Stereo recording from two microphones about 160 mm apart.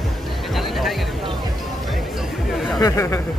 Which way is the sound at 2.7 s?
20° left (ahead or behind).